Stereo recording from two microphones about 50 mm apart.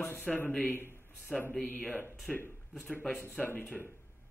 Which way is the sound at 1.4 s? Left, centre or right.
Left.